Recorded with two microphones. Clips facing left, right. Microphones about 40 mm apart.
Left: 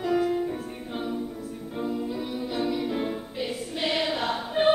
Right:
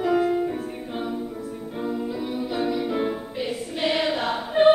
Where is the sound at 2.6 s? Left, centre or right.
Centre.